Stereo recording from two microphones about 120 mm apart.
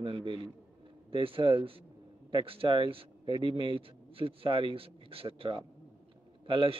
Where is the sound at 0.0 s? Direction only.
45° right (ahead or behind).